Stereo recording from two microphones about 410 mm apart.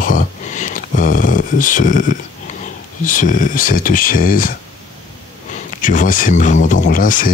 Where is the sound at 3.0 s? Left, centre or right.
Centre.